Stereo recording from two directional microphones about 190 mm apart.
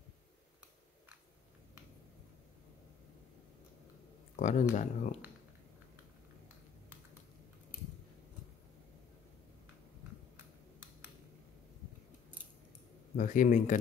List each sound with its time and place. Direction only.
4.4 s speech: 40° left (ahead or behind)
13.1 s speech: 45° left (ahead or behind)